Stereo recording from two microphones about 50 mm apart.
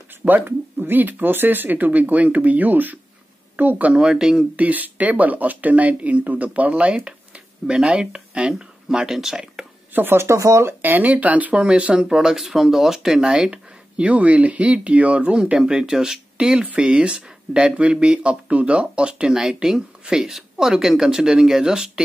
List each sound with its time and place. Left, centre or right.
0.5 s speech: right
3.9 s speech: centre
4.6 s speech: right; by 9.7 s centre
9.9 s speech: right
10.3 s speech: right
10.8 s speech: right; by 12.4 s centre
12.4 s speech: centre; by 15.5 s right
15.5 s speech: centre